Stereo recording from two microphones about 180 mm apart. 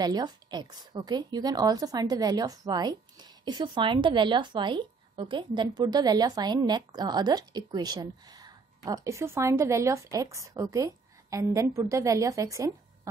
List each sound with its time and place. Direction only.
0.0 s a woman's voice: 25° right (ahead or behind)